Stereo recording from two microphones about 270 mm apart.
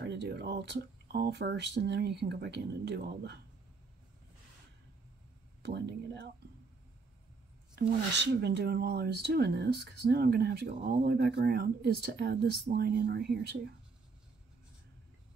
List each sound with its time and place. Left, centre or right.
0.0 s speech: right
5.6 s speech: right
8.2 s speech: right